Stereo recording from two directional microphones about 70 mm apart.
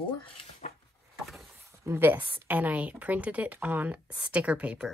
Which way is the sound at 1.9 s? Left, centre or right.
Right.